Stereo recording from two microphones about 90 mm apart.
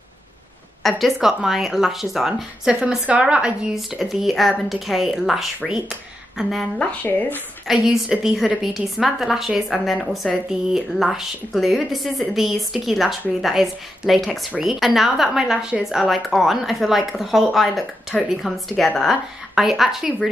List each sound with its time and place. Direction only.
0.8 s speech: centre (ahead or behind)
6.8 s speech: 15° left (ahead or behind)
7.6 s speech: 5° right (ahead or behind)